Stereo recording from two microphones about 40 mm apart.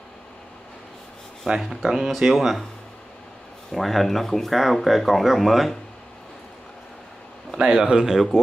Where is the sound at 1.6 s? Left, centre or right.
Centre.